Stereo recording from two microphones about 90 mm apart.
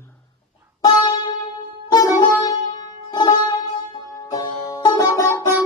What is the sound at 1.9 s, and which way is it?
Music, 45° left (ahead or behind).